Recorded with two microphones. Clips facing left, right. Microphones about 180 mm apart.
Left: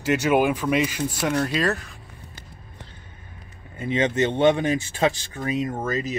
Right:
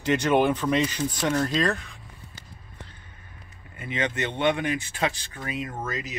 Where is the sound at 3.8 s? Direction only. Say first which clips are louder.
Left 7 dB; 30° left (ahead or behind).